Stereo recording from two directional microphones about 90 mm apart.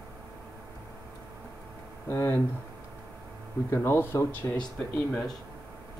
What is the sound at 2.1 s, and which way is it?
Speech, 25° left (ahead or behind).